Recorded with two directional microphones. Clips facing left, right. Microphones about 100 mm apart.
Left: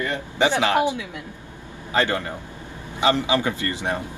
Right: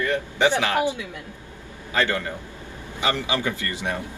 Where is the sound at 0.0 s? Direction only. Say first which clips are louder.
Right 1 dB; 20° left (ahead or behind).